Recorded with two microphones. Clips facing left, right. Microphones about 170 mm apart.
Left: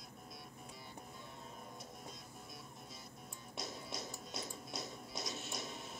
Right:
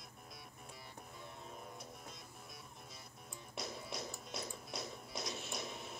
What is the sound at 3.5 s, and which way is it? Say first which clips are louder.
Music: right 1 dB; centre (ahead or behind).